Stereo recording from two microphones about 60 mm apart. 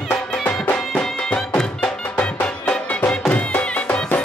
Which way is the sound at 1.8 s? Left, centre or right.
Left.